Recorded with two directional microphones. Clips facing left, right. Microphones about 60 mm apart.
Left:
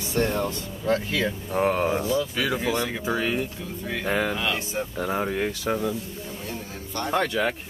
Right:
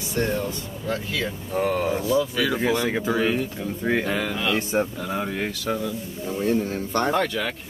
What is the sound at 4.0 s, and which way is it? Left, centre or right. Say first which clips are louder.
Speech: even; left.